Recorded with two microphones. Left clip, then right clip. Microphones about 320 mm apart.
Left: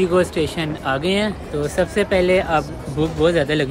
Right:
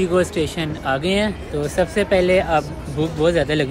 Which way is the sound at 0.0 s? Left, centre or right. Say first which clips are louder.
Left 1 dB; centre.